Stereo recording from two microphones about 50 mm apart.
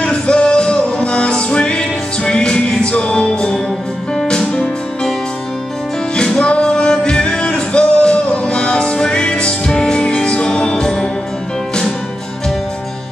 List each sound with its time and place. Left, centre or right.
0.0 s music: centre
6.1 s music: centre